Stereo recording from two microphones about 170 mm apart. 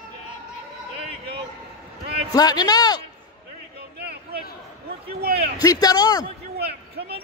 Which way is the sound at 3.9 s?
70° right (ahead or behind).